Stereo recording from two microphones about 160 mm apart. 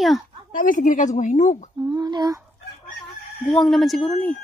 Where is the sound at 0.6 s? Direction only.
60° left (ahead or behind).